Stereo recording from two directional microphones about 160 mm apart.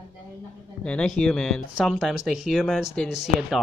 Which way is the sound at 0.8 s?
5° left (ahead or behind).